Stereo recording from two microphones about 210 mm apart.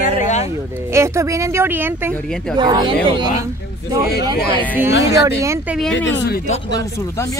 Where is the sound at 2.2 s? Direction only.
Centre (ahead or behind).